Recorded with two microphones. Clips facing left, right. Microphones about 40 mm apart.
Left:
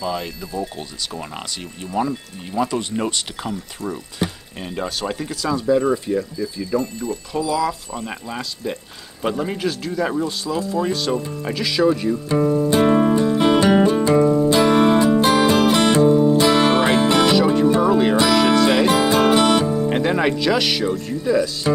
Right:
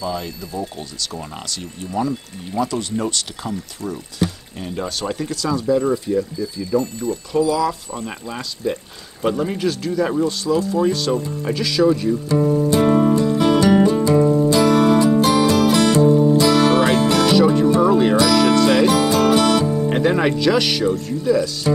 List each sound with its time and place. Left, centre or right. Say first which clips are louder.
0.0 s speech: even; left
7.4 s speech: right 2 dB; centre
12.6 s music: even; left
17.3 s music: right 1 dB; centre
17.8 s speech: right 1 dB; centre
18.3 s music: right 1 dB; centre
18.9 s music: even; left
19.7 s speech: right 1 dB; centre